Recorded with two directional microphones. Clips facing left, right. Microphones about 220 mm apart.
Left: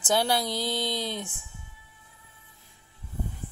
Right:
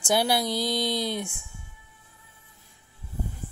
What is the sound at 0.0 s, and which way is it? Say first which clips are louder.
Speech: right 1 dB; 10° right (ahead or behind).